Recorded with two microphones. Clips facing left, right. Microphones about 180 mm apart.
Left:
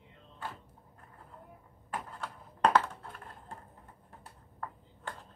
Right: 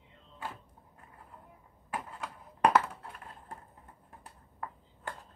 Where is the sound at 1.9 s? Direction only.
10° right (ahead or behind).